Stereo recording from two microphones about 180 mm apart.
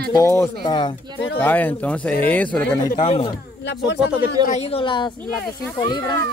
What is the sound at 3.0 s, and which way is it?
Speech, 35° left (ahead or behind).